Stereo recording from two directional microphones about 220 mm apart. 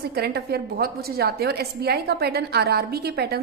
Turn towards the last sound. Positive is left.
turn(degrees=-45)  # may be behind; listen again after turning